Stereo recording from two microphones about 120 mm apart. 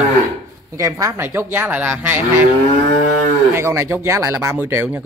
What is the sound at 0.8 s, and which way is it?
Speech, 25° right (ahead or behind).